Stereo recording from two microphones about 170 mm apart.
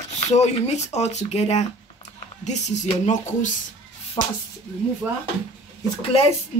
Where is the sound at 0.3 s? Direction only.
40° left (ahead or behind).